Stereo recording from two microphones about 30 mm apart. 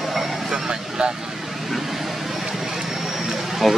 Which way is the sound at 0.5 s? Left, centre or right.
Right.